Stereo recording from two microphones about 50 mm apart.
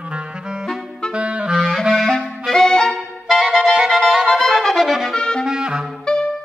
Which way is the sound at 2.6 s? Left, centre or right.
Centre.